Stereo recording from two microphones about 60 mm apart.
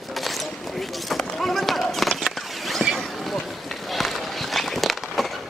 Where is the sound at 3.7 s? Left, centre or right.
Centre.